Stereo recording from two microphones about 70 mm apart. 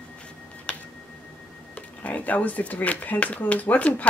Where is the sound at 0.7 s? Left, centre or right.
Centre.